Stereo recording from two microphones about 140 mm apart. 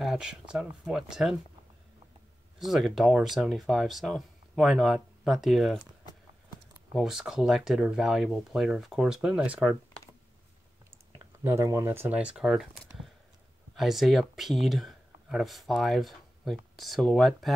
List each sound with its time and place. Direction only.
0.0 s speech: 5° right (ahead or behind)
2.6 s speech: centre (ahead or behind)
6.9 s speech: centre (ahead or behind)
11.4 s speech: 20° right (ahead or behind); by 12.6 s 5° right (ahead or behind)
13.7 s speech: centre (ahead or behind)